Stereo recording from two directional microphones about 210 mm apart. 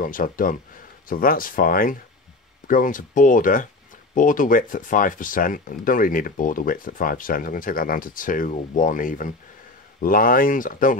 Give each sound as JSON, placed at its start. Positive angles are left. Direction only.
{"t": 0.0, "sound": "speech", "side_deg": 40}